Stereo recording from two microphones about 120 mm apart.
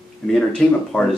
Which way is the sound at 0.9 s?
10° left (ahead or behind).